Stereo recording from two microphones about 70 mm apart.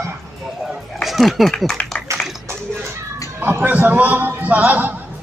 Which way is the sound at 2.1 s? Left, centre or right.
Right.